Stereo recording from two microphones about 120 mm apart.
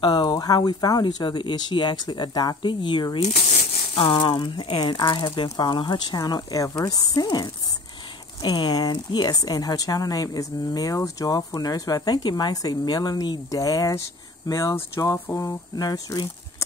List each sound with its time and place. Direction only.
0.0 s speech: 35° left (ahead or behind)
15.1 s speech: 15° left (ahead or behind)
15.4 s speech: 30° left (ahead or behind)